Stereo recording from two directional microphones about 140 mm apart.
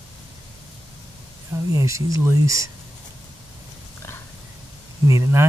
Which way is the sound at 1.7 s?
25° right (ahead or behind).